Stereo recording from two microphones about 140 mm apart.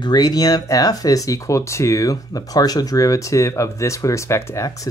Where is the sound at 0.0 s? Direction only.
30° left (ahead or behind).